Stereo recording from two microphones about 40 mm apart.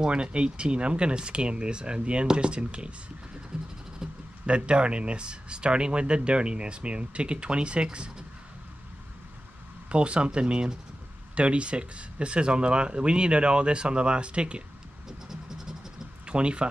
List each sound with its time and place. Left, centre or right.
0.0 s speech: right
3.5 s vehicle: centre
4.0 s a sound: centre
4.5 s speech: right
9.8 s speech: right
15.0 s vehicle: centre
16.3 s speech: right